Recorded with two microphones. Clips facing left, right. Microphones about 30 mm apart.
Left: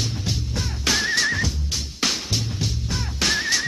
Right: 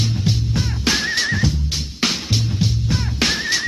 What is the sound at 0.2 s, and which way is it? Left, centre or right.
Music, centre.